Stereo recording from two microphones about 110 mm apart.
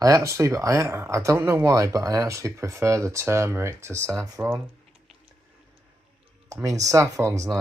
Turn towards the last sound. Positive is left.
turn(degrees=-25)  # may be behind; listen again after turning